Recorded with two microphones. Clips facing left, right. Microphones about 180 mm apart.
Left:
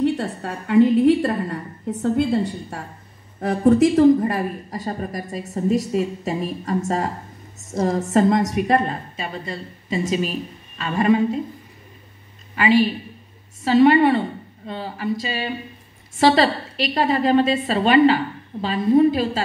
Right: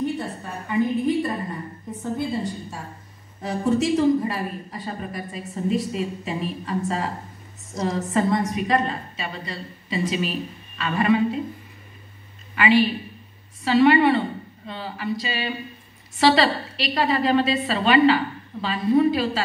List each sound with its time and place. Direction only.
0.0 s a woman's voice: 80° left
3.3 s a woman's voice: 55° left (ahead or behind)
12.5 s a woman's voice: 40° left (ahead or behind)